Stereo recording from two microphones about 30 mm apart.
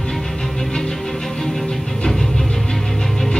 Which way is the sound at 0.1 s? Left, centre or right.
Centre.